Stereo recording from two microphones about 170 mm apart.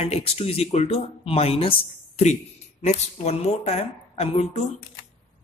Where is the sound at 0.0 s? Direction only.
35° left (ahead or behind).